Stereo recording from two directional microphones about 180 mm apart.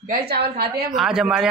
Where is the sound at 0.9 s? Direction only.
Centre (ahead or behind).